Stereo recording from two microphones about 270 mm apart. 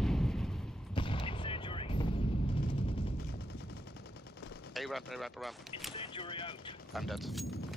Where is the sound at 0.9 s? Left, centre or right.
Centre.